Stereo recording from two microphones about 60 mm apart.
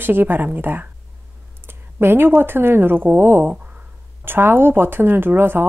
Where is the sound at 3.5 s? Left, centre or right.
Right.